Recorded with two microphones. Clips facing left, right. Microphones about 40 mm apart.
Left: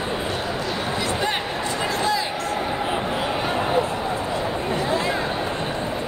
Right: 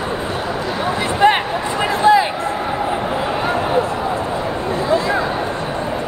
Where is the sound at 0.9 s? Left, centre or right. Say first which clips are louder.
Right 12 dB; right.